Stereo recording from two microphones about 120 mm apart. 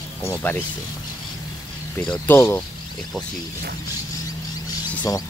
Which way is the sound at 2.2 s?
20° left (ahead or behind).